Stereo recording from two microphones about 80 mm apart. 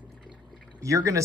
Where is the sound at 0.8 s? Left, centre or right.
Right.